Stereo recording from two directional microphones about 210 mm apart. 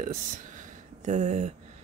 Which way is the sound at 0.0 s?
35° right (ahead or behind).